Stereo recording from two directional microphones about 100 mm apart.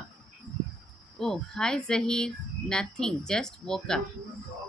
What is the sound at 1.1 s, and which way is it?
Speech, 10° left (ahead or behind).